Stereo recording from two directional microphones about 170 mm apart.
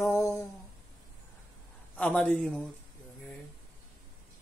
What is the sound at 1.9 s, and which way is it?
Speech, 5° left (ahead or behind).